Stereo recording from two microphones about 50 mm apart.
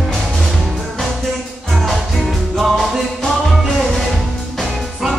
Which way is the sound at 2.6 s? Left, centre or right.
Centre.